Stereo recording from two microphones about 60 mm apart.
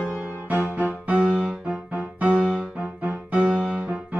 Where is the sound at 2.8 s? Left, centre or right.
Right.